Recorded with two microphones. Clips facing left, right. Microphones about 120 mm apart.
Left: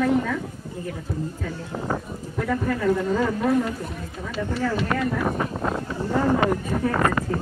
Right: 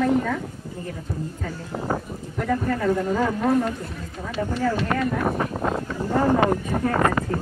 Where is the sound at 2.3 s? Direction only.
45° right (ahead or behind).